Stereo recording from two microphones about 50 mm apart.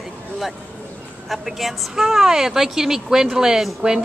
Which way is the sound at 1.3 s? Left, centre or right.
Centre.